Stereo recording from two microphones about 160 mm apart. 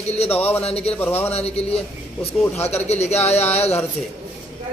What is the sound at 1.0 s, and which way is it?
Speech, 15° left (ahead or behind).